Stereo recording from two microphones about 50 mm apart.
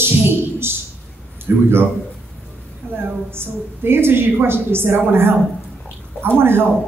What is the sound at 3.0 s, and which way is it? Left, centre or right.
A woman's voice, right.